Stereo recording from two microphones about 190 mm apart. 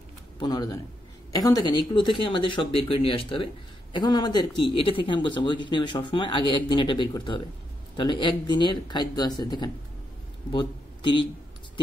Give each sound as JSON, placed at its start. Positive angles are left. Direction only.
{"t": 0.4, "sound": "a man's voice", "side_deg": 20}